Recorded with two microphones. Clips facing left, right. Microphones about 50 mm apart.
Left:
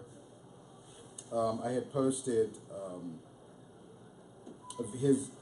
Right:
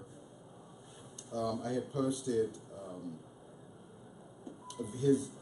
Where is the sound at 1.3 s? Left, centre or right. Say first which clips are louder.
Left 3 dB; centre.